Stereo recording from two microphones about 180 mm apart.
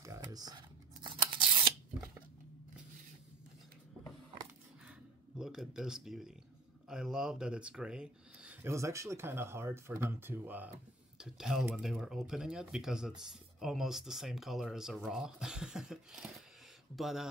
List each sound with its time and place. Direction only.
0.0 s scissors: 20° right (ahead or behind)
5.4 s speech: 5° right (ahead or behind)